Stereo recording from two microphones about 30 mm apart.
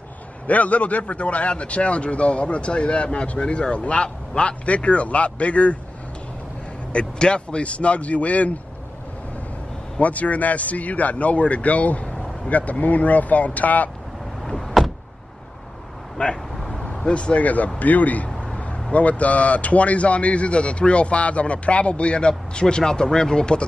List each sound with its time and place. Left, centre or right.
0.5 s speech: left
6.9 s speech: left
9.9 s speech: left
14.4 s door: centre
16.2 s speech: left
17.4 s a man's voice: left